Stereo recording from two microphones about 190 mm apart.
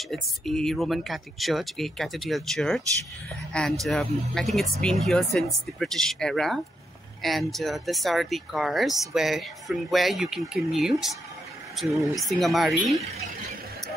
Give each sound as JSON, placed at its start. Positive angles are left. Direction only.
{"t": 0.1, "sound": "speech", "side_deg": 0}
{"t": 3.8, "sound": "speech", "side_deg": 5}